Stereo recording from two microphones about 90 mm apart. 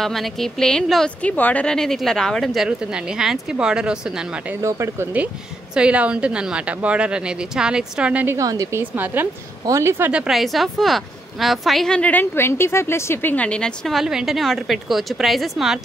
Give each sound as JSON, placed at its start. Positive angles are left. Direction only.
{"t": 0.0, "sound": "a woman's voice", "side_deg": 5}
{"t": 1.2, "sound": "a woman's voice", "side_deg": 15}
{"t": 4.6, "sound": "speech", "side_deg": -35}
{"t": 5.8, "sound": "a woman's voice", "side_deg": -15}
{"t": 8.4, "sound": "speech", "side_deg": -40}
{"t": 8.9, "sound": "a woman's voice", "side_deg": -20}
{"t": 9.7, "sound": "speech", "side_deg": -30}
{"t": 10.1, "sound": "a woman's voice", "side_deg": -5}
{"t": 13.9, "sound": "a woman's voice", "side_deg": -5}